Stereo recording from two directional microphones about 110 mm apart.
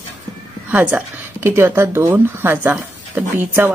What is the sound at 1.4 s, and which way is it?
Speech, 25° right (ahead or behind).